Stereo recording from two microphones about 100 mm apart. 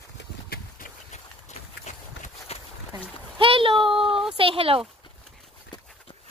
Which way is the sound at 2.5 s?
90° left.